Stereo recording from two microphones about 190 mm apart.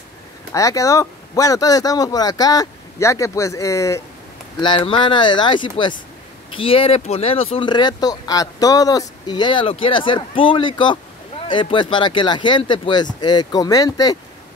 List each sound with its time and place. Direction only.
0.5 s speech: 15° left (ahead or behind)